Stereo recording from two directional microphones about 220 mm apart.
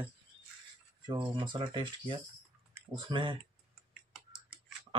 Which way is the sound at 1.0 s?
20° right (ahead or behind).